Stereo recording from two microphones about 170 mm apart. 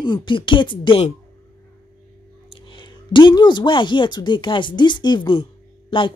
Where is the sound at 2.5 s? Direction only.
30° left (ahead or behind).